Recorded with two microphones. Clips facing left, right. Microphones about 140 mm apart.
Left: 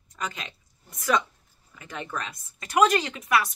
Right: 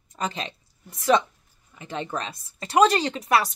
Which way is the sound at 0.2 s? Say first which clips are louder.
Right 5 dB; 30° right (ahead or behind).